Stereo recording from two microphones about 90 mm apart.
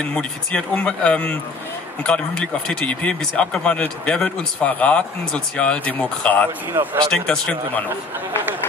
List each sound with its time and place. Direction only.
0.0 s speech: 10° left (ahead or behind)
6.7 s speech: 20° right (ahead or behind)
7.1 s speech: 10° left (ahead or behind)